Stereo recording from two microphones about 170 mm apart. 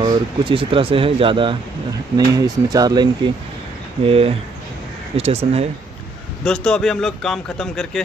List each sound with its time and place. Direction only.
0.0 s speech: 25° right (ahead or behind)
4.0 s speech: 35° right (ahead or behind)
6.4 s speech: 5° left (ahead or behind)